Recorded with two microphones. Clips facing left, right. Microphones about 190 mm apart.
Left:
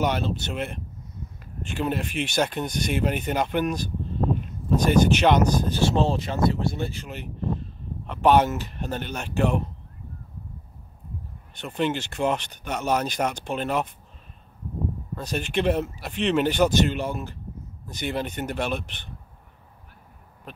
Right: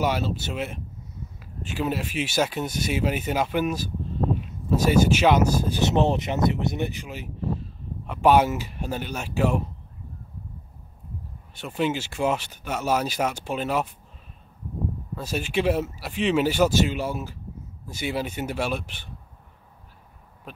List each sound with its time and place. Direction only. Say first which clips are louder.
0.0 s speech: even; 5° right (ahead or behind)
5.9 s speech: right 3 dB; 20° right (ahead or behind)
7.1 s speech: even; 5° right (ahead or behind)
11.5 s speech: even; 5° right (ahead or behind)
15.1 s speech: even; 5° right (ahead or behind)